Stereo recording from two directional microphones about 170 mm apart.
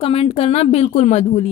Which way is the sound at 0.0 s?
35° left (ahead or behind).